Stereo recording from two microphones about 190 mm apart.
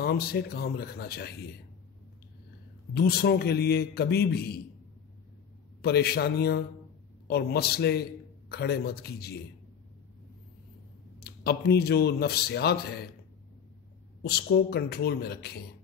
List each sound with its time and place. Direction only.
0.0 s a man's voice: 55° left (ahead or behind)
2.9 s a man's voice: 55° left (ahead or behind)
5.8 s a man's voice: 55° left (ahead or behind)
11.1 s a man's voice: 55° left (ahead or behind)
14.2 s a man's voice: 55° left (ahead or behind)